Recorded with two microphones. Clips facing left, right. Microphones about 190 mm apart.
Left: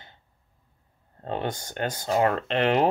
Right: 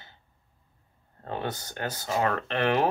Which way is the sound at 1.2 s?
20° left (ahead or behind).